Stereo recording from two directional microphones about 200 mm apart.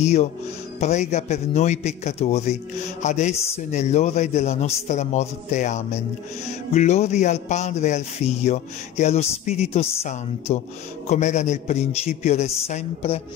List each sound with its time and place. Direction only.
0.0 s a man's voice: 35° left (ahead or behind)